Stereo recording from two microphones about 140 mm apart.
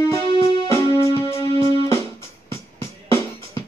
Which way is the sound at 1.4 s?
40° right (ahead or behind).